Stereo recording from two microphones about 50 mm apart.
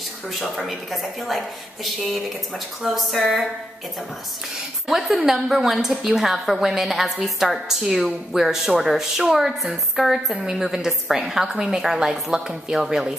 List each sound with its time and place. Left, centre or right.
0.3 s speech: centre
2.8 s speech: centre
4.8 s a woman's voice: centre
10.3 s a woman's voice: centre